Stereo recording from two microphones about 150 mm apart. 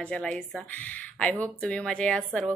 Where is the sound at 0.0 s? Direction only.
5° left (ahead or behind).